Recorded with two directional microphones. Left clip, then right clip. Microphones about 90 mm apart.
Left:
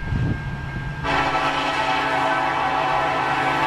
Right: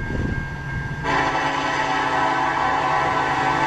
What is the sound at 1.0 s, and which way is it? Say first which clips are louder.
Music: even; 25° left (ahead or behind).